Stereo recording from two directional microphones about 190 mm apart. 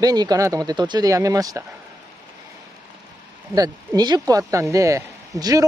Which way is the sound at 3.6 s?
20° right (ahead or behind).